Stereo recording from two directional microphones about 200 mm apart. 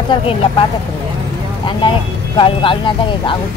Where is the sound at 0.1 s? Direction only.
25° left (ahead or behind).